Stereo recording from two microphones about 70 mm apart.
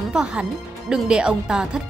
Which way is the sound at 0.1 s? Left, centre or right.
Centre.